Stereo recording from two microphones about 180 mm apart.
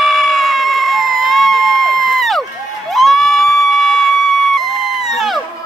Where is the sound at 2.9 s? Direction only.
Centre (ahead or behind).